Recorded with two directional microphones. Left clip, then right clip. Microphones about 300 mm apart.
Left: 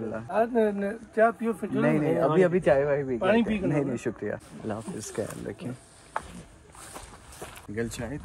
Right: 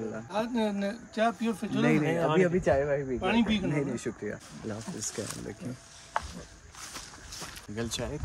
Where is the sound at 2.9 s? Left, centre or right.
Left.